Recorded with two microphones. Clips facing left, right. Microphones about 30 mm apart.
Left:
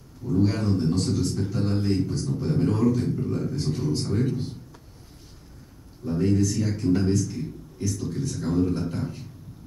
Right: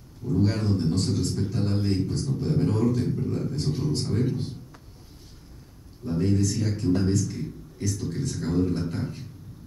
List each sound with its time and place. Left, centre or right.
0.4 s a man's voice: centre
6.0 s a man's voice: centre